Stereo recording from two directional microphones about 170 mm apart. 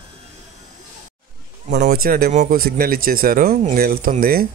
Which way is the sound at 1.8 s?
60° right (ahead or behind).